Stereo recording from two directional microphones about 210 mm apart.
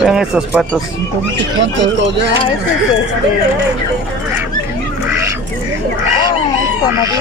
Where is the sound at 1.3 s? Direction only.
55° right (ahead or behind).